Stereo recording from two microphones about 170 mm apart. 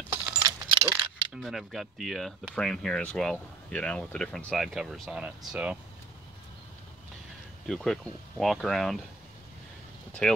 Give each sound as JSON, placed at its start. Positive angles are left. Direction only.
{"t": 0.4, "sound": "keys jangling", "side_deg": -20}
{"t": 1.3, "sound": "speech", "side_deg": 0}
{"t": 7.6, "sound": "speech", "side_deg": 0}
{"t": 10.2, "sound": "speech", "side_deg": 5}